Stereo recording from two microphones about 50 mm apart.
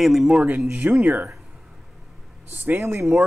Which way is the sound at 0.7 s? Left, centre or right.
Right.